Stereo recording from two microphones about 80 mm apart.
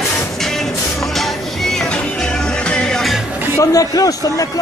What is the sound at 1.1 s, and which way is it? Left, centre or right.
Music, centre.